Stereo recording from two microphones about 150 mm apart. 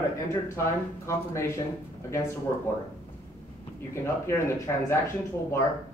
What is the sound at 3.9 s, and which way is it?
Speech, 15° left (ahead or behind).